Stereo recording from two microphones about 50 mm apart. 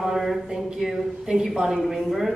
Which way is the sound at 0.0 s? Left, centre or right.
Centre.